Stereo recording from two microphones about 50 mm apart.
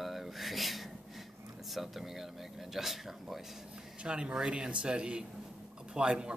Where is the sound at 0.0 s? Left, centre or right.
Centre.